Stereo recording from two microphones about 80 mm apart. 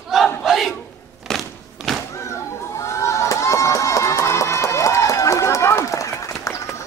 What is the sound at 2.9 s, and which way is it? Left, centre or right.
Music, left.